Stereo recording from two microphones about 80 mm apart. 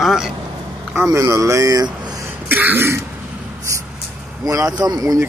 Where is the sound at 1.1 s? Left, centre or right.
Right.